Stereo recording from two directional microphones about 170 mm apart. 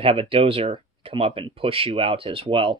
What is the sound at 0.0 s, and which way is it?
Speech, 35° right (ahead or behind).